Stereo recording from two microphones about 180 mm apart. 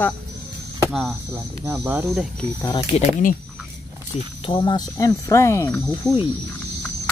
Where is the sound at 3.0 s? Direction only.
50° left (ahead or behind).